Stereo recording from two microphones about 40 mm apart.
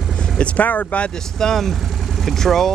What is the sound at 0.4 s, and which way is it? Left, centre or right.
Speech, left.